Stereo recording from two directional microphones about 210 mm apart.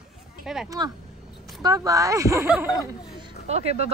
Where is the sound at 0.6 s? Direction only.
20° right (ahead or behind).